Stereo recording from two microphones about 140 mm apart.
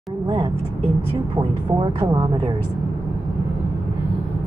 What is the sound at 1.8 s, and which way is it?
Speech, 35° right (ahead or behind).